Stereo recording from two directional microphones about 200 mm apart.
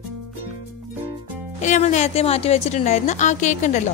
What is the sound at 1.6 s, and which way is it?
A woman's voice, 35° left (ahead or behind).